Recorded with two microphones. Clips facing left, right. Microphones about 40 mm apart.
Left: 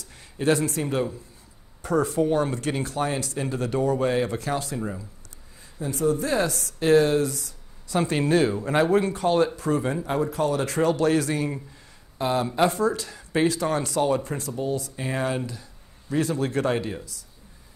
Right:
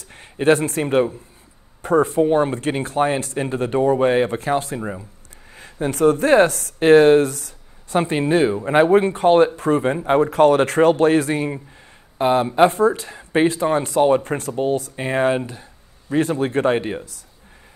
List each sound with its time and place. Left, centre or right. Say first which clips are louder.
0.0 s speech: right 6 dB; right
5.6 s speech: right 8 dB; right